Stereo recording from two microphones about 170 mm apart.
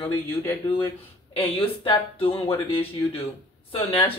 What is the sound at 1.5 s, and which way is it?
Speech, 30° left (ahead or behind).